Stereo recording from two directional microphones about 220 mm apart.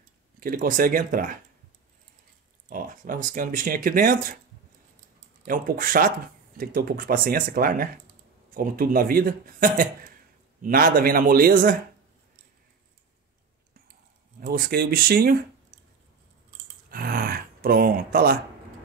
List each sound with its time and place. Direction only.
0.4 s speech: 40° right (ahead or behind)
2.7 s speech: 35° right (ahead or behind)
5.4 s speech: 40° right (ahead or behind)
14.4 s speech: 45° right (ahead or behind)
16.9 s a sound: 40° right (ahead or behind)